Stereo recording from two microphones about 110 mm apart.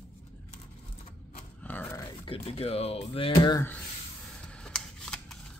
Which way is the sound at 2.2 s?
60° left (ahead or behind).